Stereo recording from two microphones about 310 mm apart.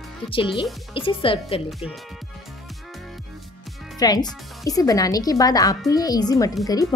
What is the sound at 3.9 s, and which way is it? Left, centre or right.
Speech, centre.